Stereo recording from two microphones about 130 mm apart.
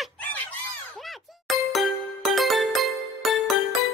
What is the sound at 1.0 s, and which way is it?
Music, centre (ahead or behind).